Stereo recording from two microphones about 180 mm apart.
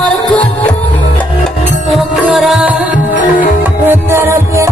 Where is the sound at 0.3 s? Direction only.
5° left (ahead or behind).